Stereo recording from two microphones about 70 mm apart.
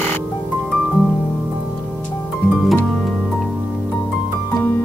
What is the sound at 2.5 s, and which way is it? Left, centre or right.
Harp, centre.